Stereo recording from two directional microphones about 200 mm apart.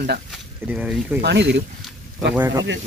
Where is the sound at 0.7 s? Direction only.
5° right (ahead or behind).